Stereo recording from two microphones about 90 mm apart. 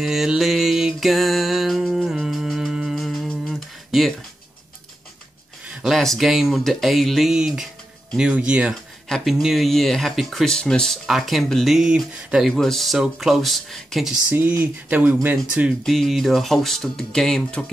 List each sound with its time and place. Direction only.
0.0 s music: 5° right (ahead or behind)
3.4 s a sound: centre (ahead or behind)
5.8 s speech: centre (ahead or behind)
9.1 s speech: centre (ahead or behind)
14.9 s speech: 20° right (ahead or behind)
15.8 s speech: centre (ahead or behind)